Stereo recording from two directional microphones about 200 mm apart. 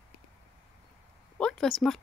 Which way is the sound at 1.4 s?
5° left (ahead or behind).